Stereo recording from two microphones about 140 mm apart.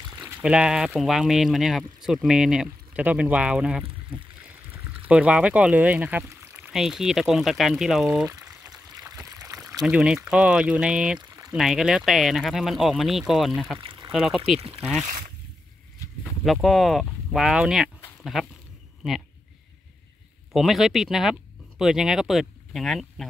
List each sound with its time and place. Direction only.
0.2 s speech: 5° right (ahead or behind)
6.7 s speech: 5° right (ahead or behind)
8.6 s water: 25° right (ahead or behind)
9.3 s pour: 25° right (ahead or behind)
9.8 s speech: 5° right (ahead or behind)
11.1 s a sound: 25° right (ahead or behind)
11.5 s speech: centre (ahead or behind)
13.7 s pour: 35° right (ahead or behind)
14.1 s speech: centre (ahead or behind)
15.0 s speech: 70° right (ahead or behind)
16.4 s speech: centre (ahead or behind)
20.5 s speech: centre (ahead or behind)